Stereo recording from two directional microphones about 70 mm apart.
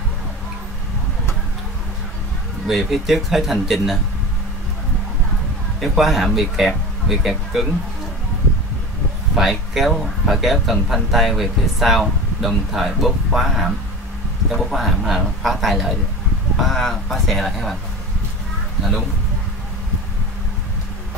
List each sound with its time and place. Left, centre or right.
2.6 s speech: centre
5.8 s speech: centre
9.3 s speech: centre